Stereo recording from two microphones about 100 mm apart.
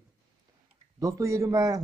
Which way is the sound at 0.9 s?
30° right (ahead or behind).